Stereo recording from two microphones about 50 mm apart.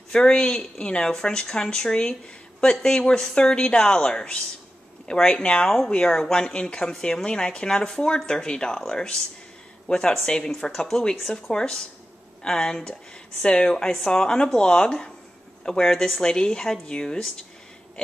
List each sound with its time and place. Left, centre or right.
0.1 s a woman's voice: centre